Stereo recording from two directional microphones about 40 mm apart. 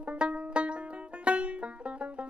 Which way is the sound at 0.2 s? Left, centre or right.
Right.